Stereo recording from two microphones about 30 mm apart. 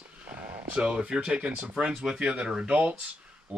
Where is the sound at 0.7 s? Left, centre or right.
Right.